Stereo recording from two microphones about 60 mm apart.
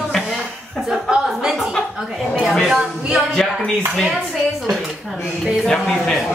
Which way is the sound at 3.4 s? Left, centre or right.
Centre.